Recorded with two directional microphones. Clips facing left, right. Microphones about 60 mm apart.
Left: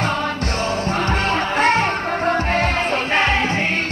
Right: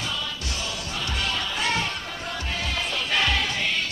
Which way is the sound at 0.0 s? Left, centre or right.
Left.